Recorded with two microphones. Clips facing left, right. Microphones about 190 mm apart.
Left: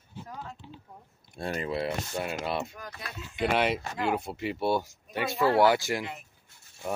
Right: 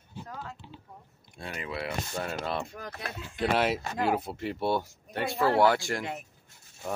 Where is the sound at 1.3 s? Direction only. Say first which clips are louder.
Left 6 dB; 40° left (ahead or behind).